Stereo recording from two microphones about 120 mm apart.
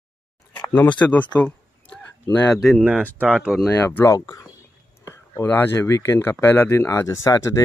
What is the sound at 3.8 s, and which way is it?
Speech, 25° left (ahead or behind).